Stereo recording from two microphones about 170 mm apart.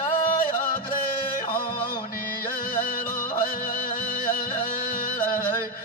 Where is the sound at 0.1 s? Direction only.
55° left (ahead or behind).